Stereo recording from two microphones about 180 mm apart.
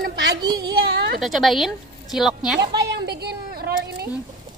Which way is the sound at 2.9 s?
65° right (ahead or behind).